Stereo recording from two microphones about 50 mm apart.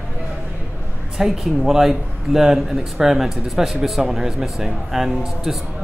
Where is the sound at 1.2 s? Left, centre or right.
Centre.